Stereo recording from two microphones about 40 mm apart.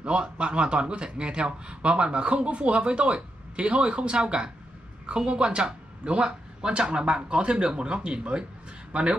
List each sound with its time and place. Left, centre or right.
0.0 s a man's voice: right